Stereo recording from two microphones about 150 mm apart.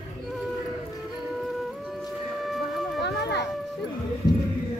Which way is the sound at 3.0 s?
90° left.